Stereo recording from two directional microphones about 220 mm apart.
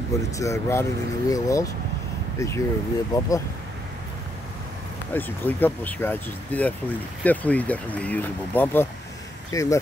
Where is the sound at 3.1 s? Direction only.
15° left (ahead or behind).